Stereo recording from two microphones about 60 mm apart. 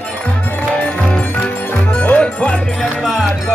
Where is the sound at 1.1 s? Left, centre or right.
Left.